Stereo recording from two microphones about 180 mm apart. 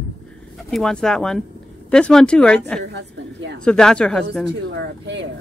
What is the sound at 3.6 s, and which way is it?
Speech, 5° left (ahead or behind).